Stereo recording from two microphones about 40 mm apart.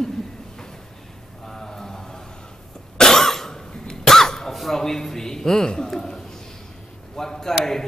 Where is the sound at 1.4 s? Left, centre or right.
Centre.